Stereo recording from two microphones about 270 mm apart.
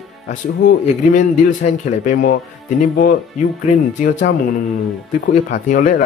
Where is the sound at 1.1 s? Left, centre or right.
Left.